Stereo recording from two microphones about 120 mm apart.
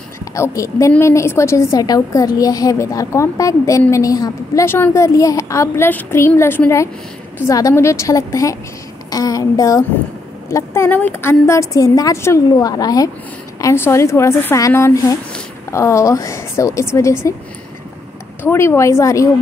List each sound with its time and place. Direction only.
0.3 s a woman's voice: 25° left (ahead or behind)
18.4 s a woman's voice: 20° left (ahead or behind)